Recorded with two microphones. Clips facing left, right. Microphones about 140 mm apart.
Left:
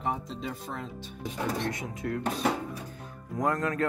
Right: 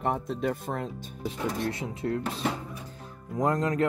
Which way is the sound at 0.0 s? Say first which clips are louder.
Right 5 dB; 60° right (ahead or behind).